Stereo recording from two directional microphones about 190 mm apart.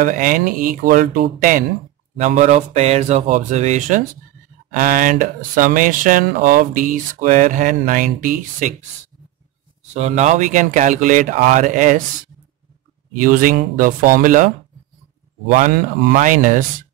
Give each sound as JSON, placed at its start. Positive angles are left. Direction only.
{"t": 0.0, "sound": "speech", "side_deg": -45}
{"t": 9.9, "sound": "speech", "side_deg": -35}
{"t": 13.1, "sound": "speech", "side_deg": -45}
{"t": 15.5, "sound": "speech", "side_deg": -45}